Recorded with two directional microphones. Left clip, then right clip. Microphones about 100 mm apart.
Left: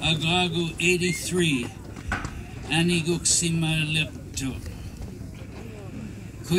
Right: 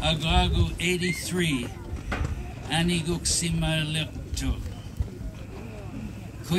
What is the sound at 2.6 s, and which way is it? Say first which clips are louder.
Speech: left 3 dB; 10° right (ahead or behind).